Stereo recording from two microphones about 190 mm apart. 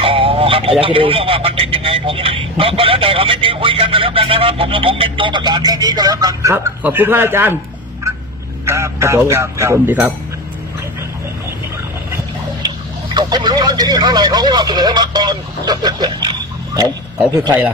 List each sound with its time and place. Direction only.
0.0 s speech: 30° right (ahead or behind); by 7.5 s 10° right (ahead or behind)
8.6 s speech: 15° right (ahead or behind)
12.6 s speech: 20° right (ahead or behind)